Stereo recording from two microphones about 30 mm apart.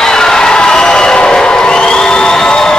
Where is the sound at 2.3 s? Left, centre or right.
Left.